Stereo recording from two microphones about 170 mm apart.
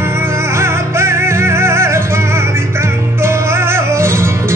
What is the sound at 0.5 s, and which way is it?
Music, 15° right (ahead or behind).